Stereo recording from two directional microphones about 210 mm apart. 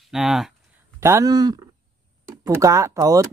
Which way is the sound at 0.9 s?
15° right (ahead or behind).